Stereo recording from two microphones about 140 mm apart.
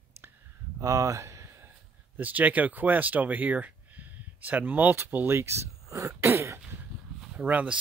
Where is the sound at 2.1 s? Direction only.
10° right (ahead or behind).